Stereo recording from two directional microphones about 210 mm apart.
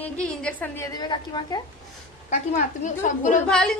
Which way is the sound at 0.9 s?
20° left (ahead or behind).